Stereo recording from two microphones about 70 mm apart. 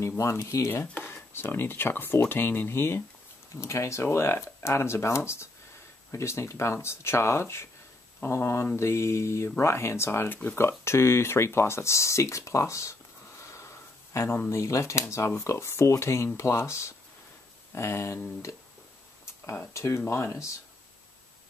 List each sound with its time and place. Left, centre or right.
0.2 s speech: left
10.8 s speech: left
13.4 s a sound: left
14.5 s speech: left
19.6 s speech: left